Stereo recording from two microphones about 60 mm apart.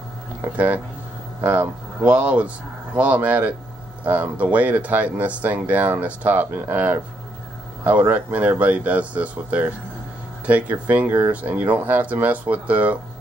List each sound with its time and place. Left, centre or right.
1.4 s speech: right
8.3 s speech: right
11.1 s speech: right
11.4 s speech: right